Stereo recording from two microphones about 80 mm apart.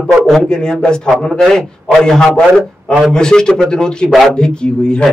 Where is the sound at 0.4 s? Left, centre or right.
Centre.